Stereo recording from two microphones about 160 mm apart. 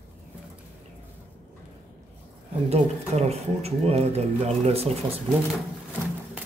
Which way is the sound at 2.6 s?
40° right (ahead or behind).